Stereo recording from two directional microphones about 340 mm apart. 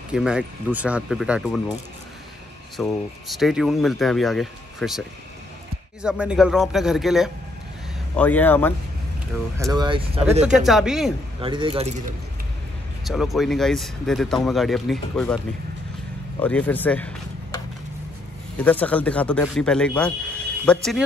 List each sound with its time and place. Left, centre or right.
0.1 s speech: centre
2.8 s speech: centre
6.0 s speech: centre
9.6 s speech: centre
10.6 s speech: centre
11.4 s speech: centre
13.0 s speech: centre
18.6 s speech: centre